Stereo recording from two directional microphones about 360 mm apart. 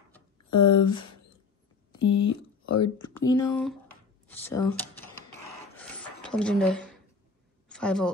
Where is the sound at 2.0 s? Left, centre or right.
Left.